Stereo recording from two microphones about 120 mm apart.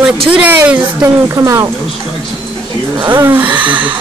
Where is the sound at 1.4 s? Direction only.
30° right (ahead or behind).